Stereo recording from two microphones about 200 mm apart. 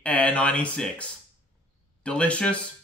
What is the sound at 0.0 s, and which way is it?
Speech, 5° left (ahead or behind).